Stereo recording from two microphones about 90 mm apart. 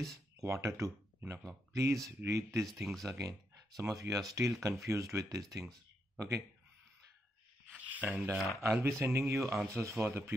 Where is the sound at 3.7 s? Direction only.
35° right (ahead or behind).